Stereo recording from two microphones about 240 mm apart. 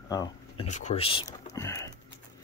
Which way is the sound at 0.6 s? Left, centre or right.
Left.